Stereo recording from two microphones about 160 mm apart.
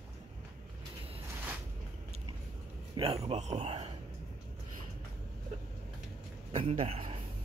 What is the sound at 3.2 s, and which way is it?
Speech, 40° right (ahead or behind).